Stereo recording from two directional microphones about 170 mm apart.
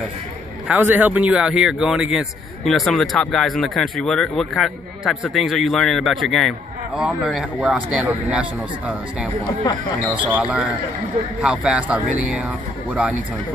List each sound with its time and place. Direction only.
0.7 s speech: 10° right (ahead or behind)